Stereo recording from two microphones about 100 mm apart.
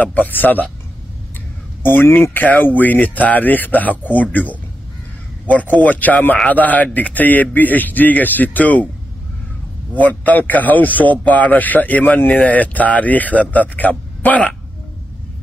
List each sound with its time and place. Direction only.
0.0 s a man's voice: 15° left (ahead or behind)
1.8 s a man's voice: 20° left (ahead or behind)
9.9 s a man's voice: 15° left (ahead or behind)